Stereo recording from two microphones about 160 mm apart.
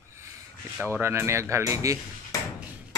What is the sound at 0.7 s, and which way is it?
Speech, 15° right (ahead or behind).